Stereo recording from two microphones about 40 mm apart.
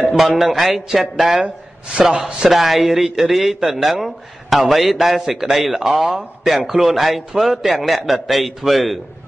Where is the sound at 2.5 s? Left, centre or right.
Centre.